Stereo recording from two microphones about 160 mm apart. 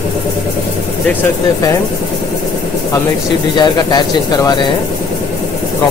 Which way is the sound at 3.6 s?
25° left (ahead or behind).